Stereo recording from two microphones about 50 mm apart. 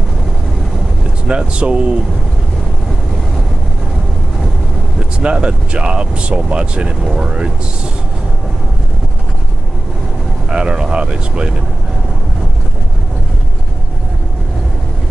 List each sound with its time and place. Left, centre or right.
1.2 s speech: centre
5.2 s speech: right
10.5 s speech: centre